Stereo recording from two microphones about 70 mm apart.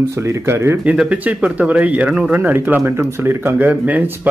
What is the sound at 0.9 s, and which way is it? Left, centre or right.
Speech, centre.